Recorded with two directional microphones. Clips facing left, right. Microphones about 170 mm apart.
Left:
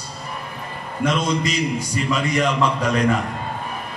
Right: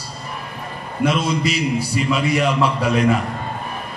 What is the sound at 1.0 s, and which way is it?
A man's voice, 10° right (ahead or behind).